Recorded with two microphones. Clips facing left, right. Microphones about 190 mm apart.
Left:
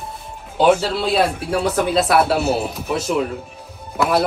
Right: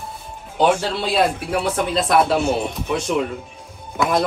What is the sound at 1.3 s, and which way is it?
Speech, 30° left (ahead or behind).